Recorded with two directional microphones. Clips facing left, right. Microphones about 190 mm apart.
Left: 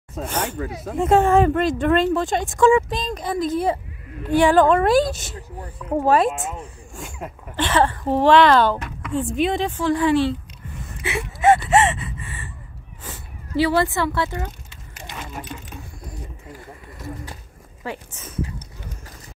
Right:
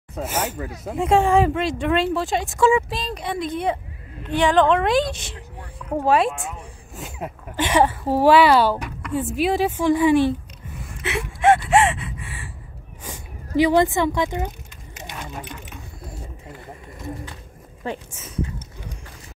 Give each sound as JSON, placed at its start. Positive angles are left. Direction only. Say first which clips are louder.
{"t": 0.1, "sound": "speech", "louder": "even", "side_deg": -10}
{"t": 6.3, "sound": "speech", "louder": "left 3 dB", "side_deg": 20}
{"t": 7.0, "sound": "speech", "louder": "right 2 dB", "side_deg": -5}
{"t": 10.9, "sound": "gasp", "louder": "even", "side_deg": 5}
{"t": 13.6, "sound": "speech", "louder": "right 2 dB", "side_deg": -15}